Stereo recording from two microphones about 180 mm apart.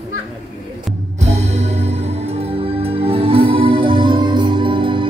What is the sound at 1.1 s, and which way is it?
Music, 40° right (ahead or behind).